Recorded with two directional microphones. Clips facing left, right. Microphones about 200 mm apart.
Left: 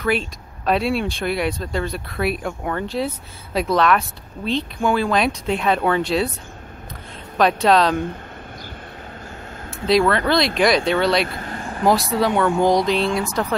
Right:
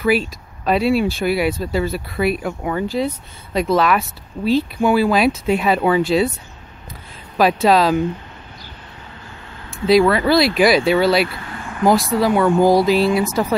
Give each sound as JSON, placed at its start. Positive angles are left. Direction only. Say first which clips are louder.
{"t": 0.0, "sound": "speech", "louder": "right 4 dB", "side_deg": -5}
{"t": 7.3, "sound": "speech", "louder": "right 2 dB", "side_deg": -5}
{"t": 9.7, "sound": "speech", "louder": "right 4 dB", "side_deg": 0}
{"t": 11.2, "sound": "vehicle", "louder": "left 1 dB", "side_deg": 45}
{"t": 11.8, "sound": "speech", "louder": "right 3 dB", "side_deg": 0}